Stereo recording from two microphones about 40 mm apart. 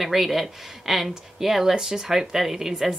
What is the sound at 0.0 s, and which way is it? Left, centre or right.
Speech, centre.